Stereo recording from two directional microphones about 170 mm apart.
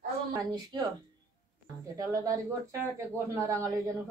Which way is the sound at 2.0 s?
20° right (ahead or behind).